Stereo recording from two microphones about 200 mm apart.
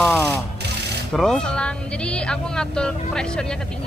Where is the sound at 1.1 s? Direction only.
5° left (ahead or behind).